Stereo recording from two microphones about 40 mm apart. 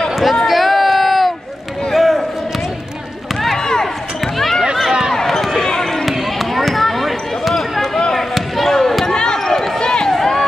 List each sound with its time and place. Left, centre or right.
0.1 s a sound: centre
2.0 s basketball bounce: centre
3.3 s a sound: centre
5.9 s basketball bounce: centre
9.1 s basketball bounce: centre
9.8 s run: centre